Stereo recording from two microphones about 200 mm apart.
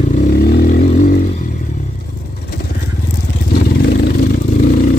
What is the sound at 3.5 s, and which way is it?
Vehicle, 50° left (ahead or behind).